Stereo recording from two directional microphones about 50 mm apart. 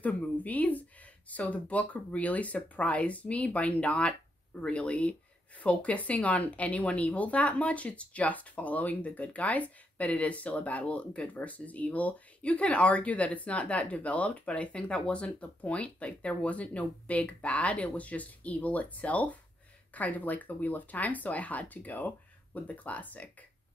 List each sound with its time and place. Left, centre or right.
0.0 s speech: left